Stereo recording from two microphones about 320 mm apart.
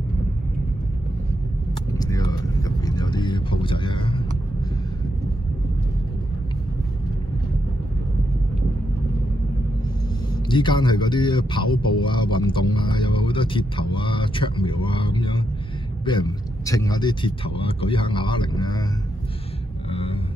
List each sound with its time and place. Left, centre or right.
2.0 s vehicle: centre
10.5 s speech: centre
19.9 s rumble: centre